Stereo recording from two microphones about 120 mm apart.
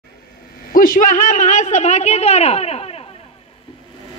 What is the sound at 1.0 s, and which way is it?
Speech, 90° left.